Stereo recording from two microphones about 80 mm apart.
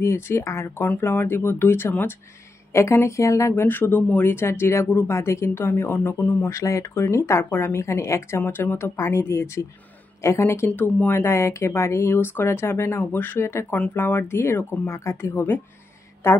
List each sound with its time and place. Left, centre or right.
0.0 s speech: left
3.6 s speech: left
6.5 s speech: left
8.4 s speech: left
10.7 s speech: left